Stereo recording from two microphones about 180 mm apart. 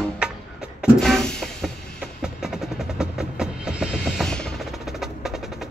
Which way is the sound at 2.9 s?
5° right (ahead or behind).